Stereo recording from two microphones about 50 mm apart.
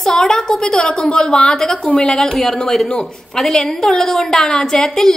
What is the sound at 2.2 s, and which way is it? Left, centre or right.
A woman's voice, centre.